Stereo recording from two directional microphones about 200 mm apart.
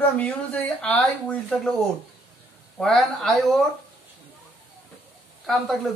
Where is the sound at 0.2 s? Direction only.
5° left (ahead or behind).